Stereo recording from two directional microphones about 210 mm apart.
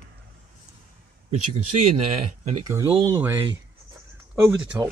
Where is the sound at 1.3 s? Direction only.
90° right.